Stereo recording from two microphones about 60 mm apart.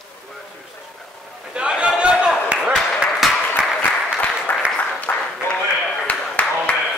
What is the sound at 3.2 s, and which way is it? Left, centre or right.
Applause, centre.